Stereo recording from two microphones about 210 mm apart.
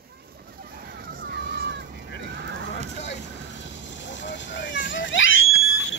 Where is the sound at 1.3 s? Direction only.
55° right (ahead or behind).